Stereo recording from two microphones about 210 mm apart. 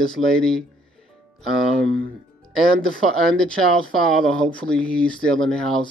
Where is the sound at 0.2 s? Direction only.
Centre (ahead or behind).